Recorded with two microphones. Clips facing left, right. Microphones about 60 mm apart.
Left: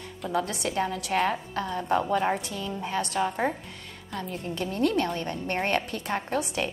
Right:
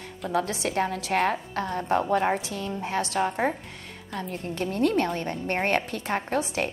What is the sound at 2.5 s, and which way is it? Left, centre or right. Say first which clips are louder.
Speech: right 2 dB; right.